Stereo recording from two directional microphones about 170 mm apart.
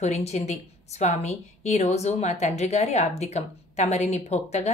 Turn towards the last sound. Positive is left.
turn(degrees=40)  # may be behind; listen again after turning